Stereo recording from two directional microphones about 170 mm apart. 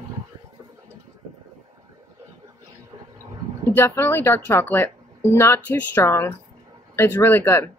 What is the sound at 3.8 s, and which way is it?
Speech, 15° left (ahead or behind).